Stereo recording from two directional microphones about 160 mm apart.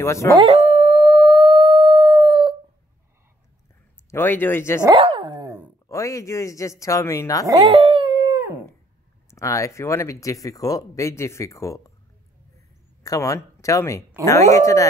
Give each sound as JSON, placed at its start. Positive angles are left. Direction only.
{"t": 0.0, "sound": "speech", "side_deg": 15}
{"t": 0.4, "sound": "howl", "side_deg": -40}
{"t": 4.1, "sound": "speech", "side_deg": 15}
{"t": 4.8, "sound": "dog", "side_deg": -35}
{"t": 5.9, "sound": "speech", "side_deg": 20}
{"t": 7.4, "sound": "speech", "side_deg": -25}
{"t": 7.7, "sound": "dog", "side_deg": -35}
{"t": 9.3, "sound": "speech", "side_deg": 20}
{"t": 13.0, "sound": "speech", "side_deg": 20}